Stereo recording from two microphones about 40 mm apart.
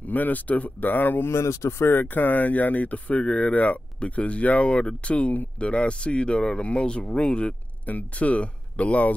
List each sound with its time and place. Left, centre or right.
0.0 s speech: left
0.7 s speech: left
1.2 s speech: left
2.1 s speech: left
7.8 s speech: left